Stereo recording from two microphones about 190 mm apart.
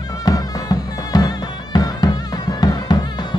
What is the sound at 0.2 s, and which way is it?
Music, 20° left (ahead or behind).